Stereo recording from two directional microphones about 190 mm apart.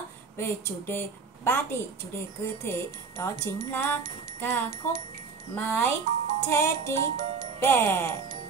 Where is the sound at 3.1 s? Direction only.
15° left (ahead or behind).